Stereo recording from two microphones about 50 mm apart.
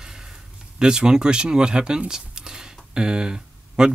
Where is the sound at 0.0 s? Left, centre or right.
Centre.